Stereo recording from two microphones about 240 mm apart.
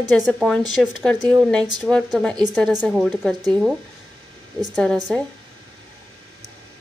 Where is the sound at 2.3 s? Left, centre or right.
Centre.